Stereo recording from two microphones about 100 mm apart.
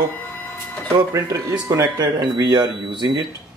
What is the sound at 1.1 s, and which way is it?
Speech, 35° right (ahead or behind).